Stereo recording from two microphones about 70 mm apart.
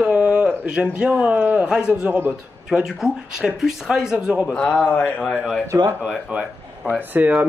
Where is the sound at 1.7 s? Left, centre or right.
Centre.